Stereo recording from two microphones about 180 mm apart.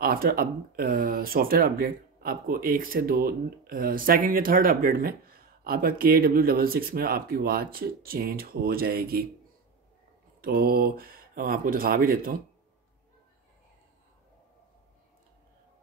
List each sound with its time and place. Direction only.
0.0 s speech: 55° right (ahead or behind)
10.4 s speech: 60° right (ahead or behind)